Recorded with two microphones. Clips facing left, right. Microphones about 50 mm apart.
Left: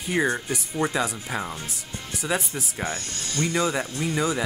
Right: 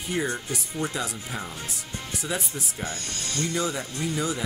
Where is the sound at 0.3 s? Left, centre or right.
Left.